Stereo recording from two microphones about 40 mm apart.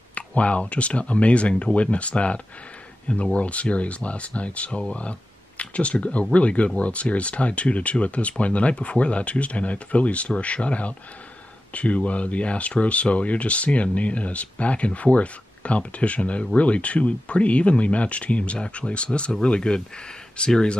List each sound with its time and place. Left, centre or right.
0.1 s speech: left